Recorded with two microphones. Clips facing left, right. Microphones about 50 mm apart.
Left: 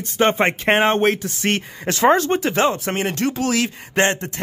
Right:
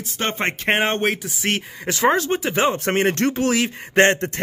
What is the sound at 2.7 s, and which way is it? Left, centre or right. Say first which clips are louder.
Speech: right 3 dB; right.